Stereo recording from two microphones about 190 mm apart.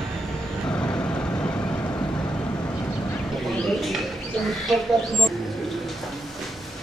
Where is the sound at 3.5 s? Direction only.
Centre (ahead or behind).